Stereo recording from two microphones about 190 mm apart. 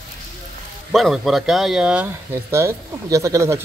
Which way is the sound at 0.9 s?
Centre (ahead or behind).